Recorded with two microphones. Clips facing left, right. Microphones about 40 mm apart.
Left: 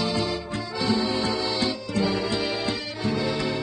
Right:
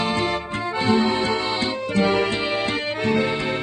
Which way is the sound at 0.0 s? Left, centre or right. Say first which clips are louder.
Right 4 dB; right.